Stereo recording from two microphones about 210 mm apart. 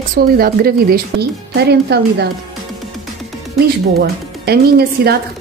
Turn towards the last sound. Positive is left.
turn(degrees=-50)  # may be behind; listen again after turning